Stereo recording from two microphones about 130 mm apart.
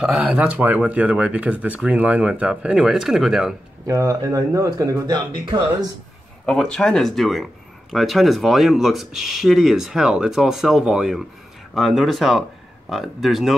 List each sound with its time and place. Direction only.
0.0 s speech: 5° right (ahead or behind)
3.8 s speech: 20° right (ahead or behind)
6.4 s speech: 5° left (ahead or behind)